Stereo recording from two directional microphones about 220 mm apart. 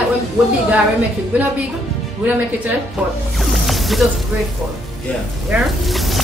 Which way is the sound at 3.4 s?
Centre (ahead or behind).